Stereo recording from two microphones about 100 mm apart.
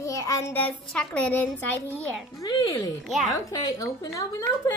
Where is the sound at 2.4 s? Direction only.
35° left (ahead or behind).